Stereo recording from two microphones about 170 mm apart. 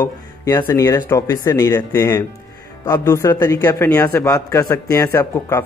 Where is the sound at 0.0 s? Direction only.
15° left (ahead or behind).